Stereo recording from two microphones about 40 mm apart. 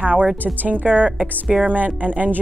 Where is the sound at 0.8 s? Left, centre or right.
Right.